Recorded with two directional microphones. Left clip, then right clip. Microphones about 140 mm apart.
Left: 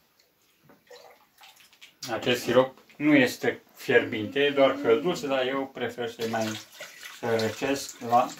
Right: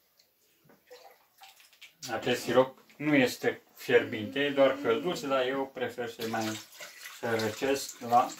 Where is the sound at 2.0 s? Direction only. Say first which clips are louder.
Left 4 dB; 65° left (ahead or behind); by 4.6 s 40° left (ahead or behind).